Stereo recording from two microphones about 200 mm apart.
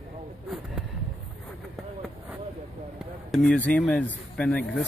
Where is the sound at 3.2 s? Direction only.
5° left (ahead or behind).